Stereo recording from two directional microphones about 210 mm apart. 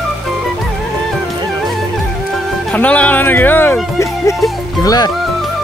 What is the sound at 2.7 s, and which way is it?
Speech, 5° left (ahead or behind).